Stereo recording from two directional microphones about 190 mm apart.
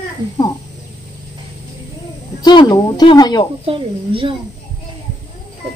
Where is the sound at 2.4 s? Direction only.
25° left (ahead or behind).